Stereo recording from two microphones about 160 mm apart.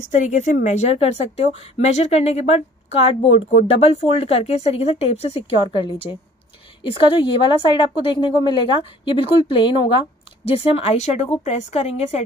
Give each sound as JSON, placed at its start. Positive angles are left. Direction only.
{"t": 0.0, "sound": "a woman's voice", "side_deg": 50}